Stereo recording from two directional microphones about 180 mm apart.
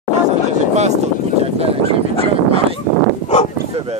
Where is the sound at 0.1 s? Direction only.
40° right (ahead or behind).